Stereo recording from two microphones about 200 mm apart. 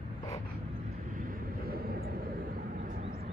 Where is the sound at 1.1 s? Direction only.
45° right (ahead or behind).